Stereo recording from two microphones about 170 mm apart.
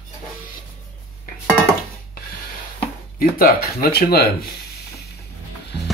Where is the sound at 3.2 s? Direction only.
60° left (ahead or behind).